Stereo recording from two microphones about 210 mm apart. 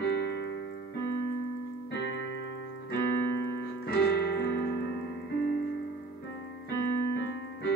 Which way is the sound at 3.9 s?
50° left (ahead or behind).